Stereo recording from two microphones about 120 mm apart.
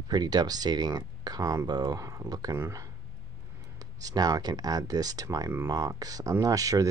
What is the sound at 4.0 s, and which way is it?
Speech, 30° right (ahead or behind).